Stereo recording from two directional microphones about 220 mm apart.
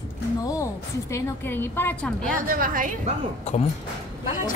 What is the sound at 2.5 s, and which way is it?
Speech, 40° right (ahead or behind).